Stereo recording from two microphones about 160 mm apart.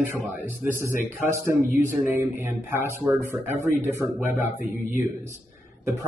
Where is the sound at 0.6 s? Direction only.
15° right (ahead or behind).